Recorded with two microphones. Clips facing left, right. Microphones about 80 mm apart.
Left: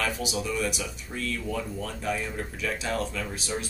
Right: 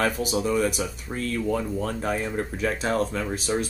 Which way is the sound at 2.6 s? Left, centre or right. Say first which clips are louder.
Right 5 dB; right.